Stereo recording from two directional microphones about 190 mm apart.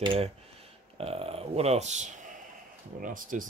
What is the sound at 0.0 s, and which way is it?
Speech, 25° right (ahead or behind).